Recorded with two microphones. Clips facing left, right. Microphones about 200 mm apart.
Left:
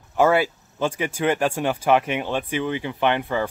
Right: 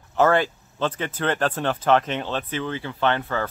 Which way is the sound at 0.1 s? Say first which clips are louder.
Left 1 dB; 10° left (ahead or behind).